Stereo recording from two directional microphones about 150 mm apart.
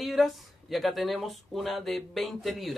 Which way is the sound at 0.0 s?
Centre (ahead or behind).